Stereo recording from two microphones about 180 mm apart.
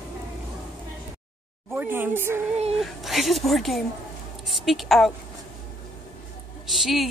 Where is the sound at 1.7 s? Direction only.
10° right (ahead or behind).